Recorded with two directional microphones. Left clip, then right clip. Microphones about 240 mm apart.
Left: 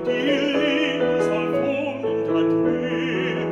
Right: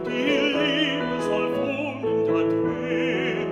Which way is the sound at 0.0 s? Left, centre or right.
Centre.